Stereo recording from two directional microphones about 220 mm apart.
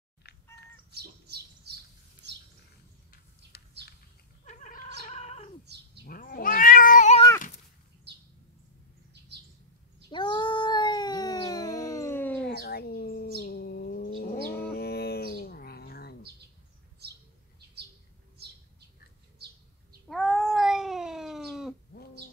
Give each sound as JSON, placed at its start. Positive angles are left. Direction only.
{"t": 0.9, "sound": "bird", "side_deg": -45}
{"t": 3.5, "sound": "a sound", "side_deg": 45}
{"t": 4.5, "sound": "cat", "side_deg": 35}
{"t": 5.7, "sound": "cat", "side_deg": -50}
{"t": 6.0, "sound": "cat", "side_deg": 40}
{"t": 7.2, "sound": "cat", "side_deg": 15}
{"t": 10.1, "sound": "cat", "side_deg": 20}
{"t": 12.4, "sound": "bird", "side_deg": 45}
{"t": 13.4, "sound": "a sound", "side_deg": 40}
{"t": 17.0, "sound": "bird", "side_deg": -50}
{"t": 20.1, "sound": "cat", "side_deg": 0}